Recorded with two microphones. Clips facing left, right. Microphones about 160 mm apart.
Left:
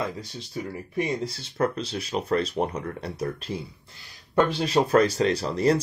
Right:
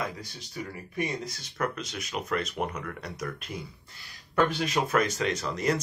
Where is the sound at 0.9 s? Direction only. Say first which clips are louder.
Left 5 dB; 30° left (ahead or behind).